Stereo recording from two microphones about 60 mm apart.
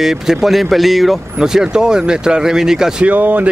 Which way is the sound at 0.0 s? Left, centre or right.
Centre.